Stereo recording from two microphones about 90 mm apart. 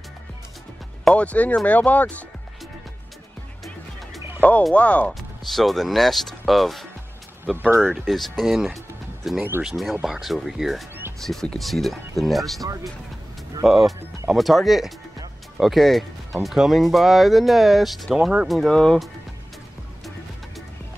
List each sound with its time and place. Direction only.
1.0 s speech: 15° left (ahead or behind)
4.4 s speech: 15° left (ahead or behind)
5.4 s speech: centre (ahead or behind)
8.1 s speech: centre (ahead or behind)
13.7 s speech: centre (ahead or behind)